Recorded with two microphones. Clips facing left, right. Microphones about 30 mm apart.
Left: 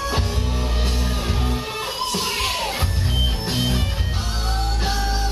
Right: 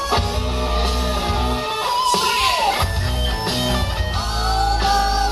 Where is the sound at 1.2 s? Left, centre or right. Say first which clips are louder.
Right 4 dB; right.